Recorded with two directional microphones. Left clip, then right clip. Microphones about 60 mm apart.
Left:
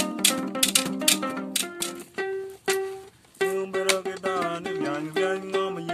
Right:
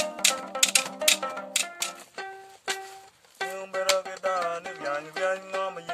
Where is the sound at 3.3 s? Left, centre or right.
Centre.